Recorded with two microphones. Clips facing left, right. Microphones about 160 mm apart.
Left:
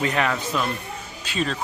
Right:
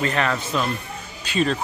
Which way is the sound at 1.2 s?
Centre (ahead or behind).